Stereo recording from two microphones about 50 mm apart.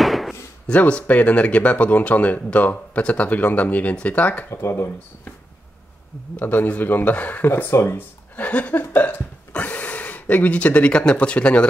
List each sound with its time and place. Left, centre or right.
0.0 s a sound: centre
0.7 s speech: left
4.5 s speech: left
6.3 s speech: left
7.4 s speech: left
8.4 s speech: left